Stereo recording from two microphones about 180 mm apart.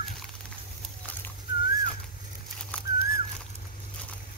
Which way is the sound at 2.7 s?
10° left (ahead or behind).